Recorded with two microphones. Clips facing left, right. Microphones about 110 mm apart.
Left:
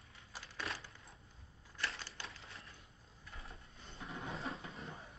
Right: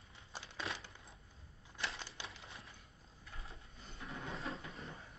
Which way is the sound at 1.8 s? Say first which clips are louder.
Even; 20° right (ahead or behind).